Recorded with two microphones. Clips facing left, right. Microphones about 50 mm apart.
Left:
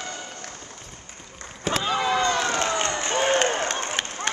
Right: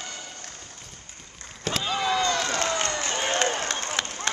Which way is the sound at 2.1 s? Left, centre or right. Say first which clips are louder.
Left 2 dB; left.